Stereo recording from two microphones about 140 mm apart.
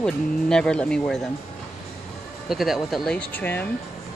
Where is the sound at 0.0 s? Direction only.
5° left (ahead or behind).